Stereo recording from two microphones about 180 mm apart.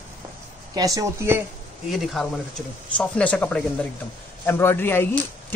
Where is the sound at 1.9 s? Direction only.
Centre (ahead or behind).